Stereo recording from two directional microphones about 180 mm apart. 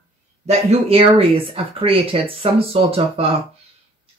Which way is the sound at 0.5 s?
35° right (ahead or behind).